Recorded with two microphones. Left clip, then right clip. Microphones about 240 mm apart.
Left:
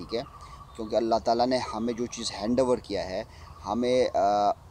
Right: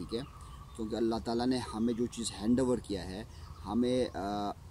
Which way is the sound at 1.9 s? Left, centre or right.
Left.